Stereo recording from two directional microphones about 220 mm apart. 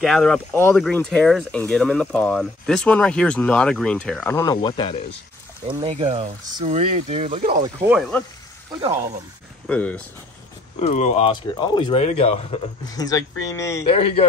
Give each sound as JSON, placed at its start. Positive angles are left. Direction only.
{"t": 0.0, "sound": "speech", "side_deg": 0}
{"t": 5.7, "sound": "speech", "side_deg": -30}
{"t": 9.7, "sound": "speech", "side_deg": 5}
{"t": 10.8, "sound": "speech", "side_deg": 30}
{"t": 13.8, "sound": "speech", "side_deg": 25}